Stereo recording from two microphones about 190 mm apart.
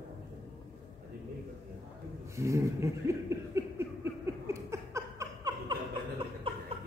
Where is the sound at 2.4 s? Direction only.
15° right (ahead or behind).